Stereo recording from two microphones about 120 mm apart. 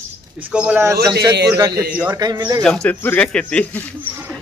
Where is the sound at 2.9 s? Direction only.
15° left (ahead or behind).